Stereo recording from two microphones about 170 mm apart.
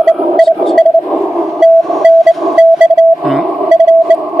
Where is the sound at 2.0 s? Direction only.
5° right (ahead or behind).